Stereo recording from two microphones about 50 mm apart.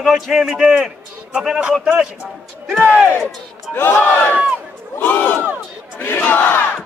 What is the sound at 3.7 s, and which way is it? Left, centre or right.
Speech, left.